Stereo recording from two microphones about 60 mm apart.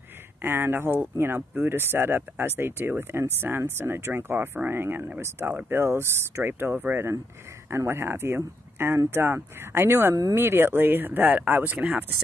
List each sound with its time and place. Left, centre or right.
0.4 s speech: right
7.7 s speech: right